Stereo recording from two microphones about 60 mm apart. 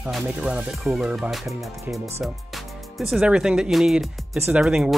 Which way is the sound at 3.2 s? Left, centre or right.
Centre.